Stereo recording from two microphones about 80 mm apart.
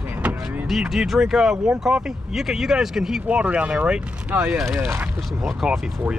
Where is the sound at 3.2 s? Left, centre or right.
Centre.